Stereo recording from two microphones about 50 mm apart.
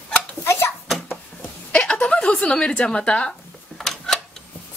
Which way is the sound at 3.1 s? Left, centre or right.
Left.